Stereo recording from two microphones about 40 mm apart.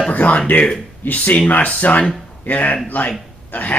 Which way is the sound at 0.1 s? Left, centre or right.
Left.